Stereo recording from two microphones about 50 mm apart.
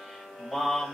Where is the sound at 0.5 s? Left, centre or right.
Centre.